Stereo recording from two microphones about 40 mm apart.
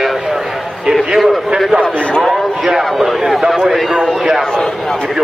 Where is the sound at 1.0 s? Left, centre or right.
Centre.